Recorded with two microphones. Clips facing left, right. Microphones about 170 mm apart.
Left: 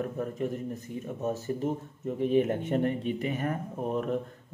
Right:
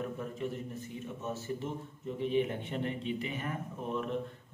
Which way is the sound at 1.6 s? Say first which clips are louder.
Left 8 dB; 45° left (ahead or behind).